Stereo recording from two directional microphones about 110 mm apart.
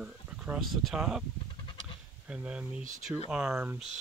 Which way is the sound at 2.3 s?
10° right (ahead or behind).